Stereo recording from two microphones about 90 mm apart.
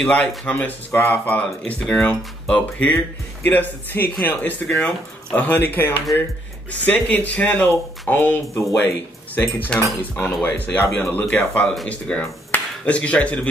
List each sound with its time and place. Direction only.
0.0 s speech: 10° left (ahead or behind)